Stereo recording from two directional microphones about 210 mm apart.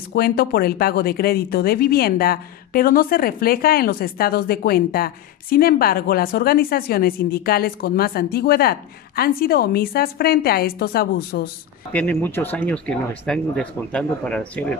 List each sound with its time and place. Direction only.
0.1 s speech: 45° left (ahead or behind)
11.9 s speech: 5° left (ahead or behind)